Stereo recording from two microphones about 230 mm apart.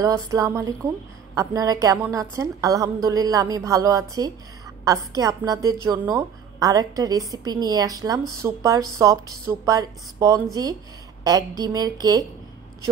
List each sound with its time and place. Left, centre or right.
0.0 s a woman's voice: centre